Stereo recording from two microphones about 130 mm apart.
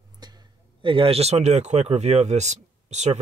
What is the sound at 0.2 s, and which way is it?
Speech, 30° right (ahead or behind).